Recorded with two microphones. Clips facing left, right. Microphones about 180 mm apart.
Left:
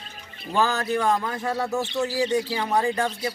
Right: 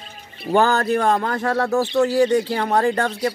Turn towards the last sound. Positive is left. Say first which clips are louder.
# right 5 dB
turn(degrees=-65)  # may be behind; listen again after turning